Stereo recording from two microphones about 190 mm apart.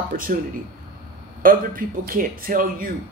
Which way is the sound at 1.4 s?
50° right (ahead or behind).